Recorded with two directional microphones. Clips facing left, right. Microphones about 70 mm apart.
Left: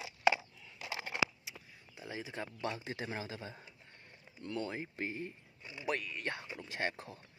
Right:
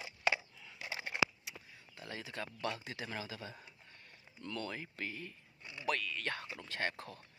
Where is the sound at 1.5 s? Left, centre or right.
Centre.